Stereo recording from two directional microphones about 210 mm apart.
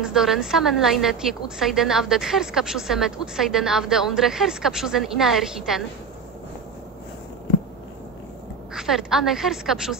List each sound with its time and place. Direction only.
0.0 s a woman's voice: centre (ahead or behind)
8.7 s a woman's voice: centre (ahead or behind)